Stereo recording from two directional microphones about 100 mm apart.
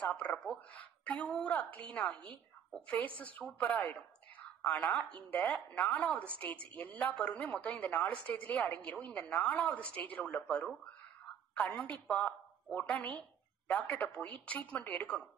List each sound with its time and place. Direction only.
0.1 s a woman's voice: 10° left (ahead or behind)